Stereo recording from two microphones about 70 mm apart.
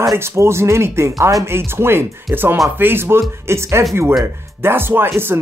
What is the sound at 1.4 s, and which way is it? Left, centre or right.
Speech, right.